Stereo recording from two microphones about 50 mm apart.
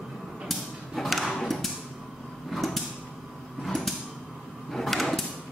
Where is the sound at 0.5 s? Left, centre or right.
Centre.